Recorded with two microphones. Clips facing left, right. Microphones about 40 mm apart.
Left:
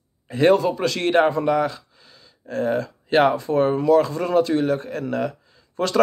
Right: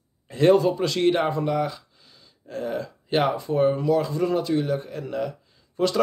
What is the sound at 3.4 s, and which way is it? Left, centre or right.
Speech, left.